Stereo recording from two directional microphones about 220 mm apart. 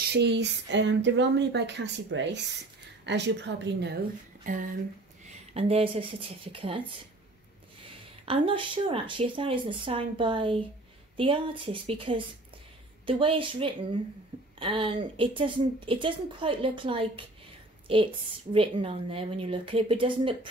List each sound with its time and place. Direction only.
0.1 s speech: 50° right (ahead or behind)
4.4 s a woman's voice: 35° right (ahead or behind)
8.3 s a woman's voice: 25° right (ahead or behind)